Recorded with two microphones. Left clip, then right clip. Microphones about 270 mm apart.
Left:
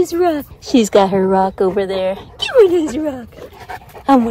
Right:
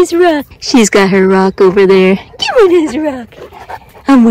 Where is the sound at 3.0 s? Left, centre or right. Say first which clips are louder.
Right 6 dB; right.